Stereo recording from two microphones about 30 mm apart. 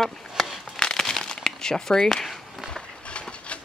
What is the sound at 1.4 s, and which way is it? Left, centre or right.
Speech, centre.